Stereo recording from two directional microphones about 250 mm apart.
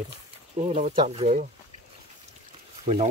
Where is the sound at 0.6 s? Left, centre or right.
Right.